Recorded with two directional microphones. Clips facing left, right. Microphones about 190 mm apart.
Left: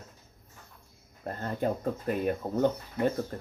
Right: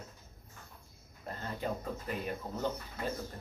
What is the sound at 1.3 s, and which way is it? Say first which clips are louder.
Speech: left 7 dB; 50° left (ahead or behind).